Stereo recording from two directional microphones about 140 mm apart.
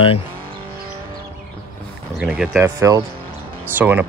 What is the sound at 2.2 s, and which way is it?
Speech, 10° right (ahead or behind).